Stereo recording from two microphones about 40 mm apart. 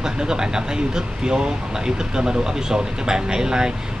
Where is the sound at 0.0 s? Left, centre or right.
Centre.